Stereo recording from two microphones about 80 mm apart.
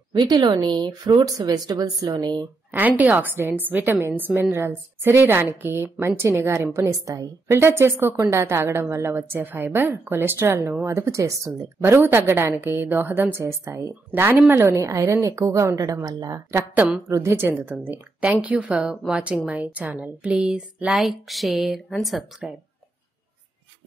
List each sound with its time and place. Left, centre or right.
0.1 s a woman's voice: right
1.2 s speech: right
3.0 s a woman's voice: right
6.8 s speech: right
7.5 s a woman's voice: right
11.8 s a woman's voice: right
17.1 s a woman's voice: right; by 21.0 s centre
21.0 s a woman's voice: centre